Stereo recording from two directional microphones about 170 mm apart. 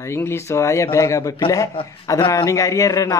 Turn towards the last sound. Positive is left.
turn(degrees=20)  # may be behind; listen again after turning